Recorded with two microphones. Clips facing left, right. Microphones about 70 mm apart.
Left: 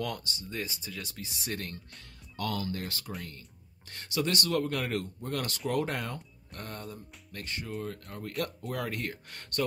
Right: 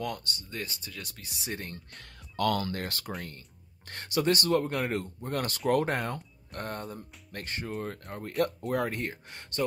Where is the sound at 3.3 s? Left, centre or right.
Right.